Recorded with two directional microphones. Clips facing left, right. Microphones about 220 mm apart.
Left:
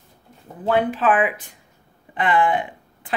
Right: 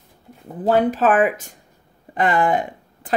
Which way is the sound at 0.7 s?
40° right (ahead or behind).